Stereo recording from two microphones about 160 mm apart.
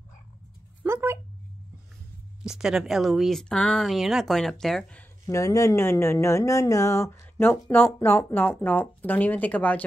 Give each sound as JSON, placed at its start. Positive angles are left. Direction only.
{"t": 0.8, "sound": "a sound", "side_deg": -15}
{"t": 2.4, "sound": "speech", "side_deg": -5}
{"t": 5.2, "sound": "speech", "side_deg": 20}